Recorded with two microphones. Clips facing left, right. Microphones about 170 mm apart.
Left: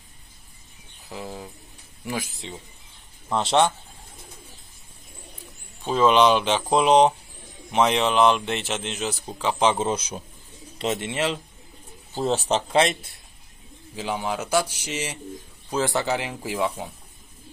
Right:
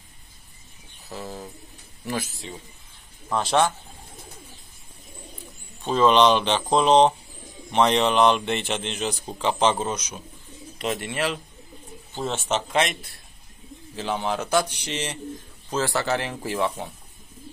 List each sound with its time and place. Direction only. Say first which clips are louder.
1.0 s speech: even; 15° left (ahead or behind)
3.3 s speech: left 1 dB; 25° left (ahead or behind)
5.9 s a man's voice: even; 5° left (ahead or behind)
9.1 s speech: right 1 dB; 10° right (ahead or behind)
9.4 s speech: even; 5° left (ahead or behind)
9.8 s speech: left 3 dB; 30° left (ahead or behind)
12.1 s a man's voice: left 3 dB; 35° left (ahead or behind)
13.9 s speech: right 1 dB; 10° left (ahead or behind)